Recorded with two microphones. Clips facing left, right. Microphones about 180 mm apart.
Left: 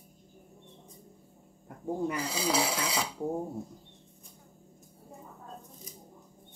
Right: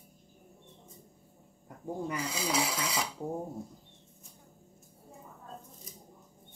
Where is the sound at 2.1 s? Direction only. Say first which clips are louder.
Left 3 dB; 35° left (ahead or behind).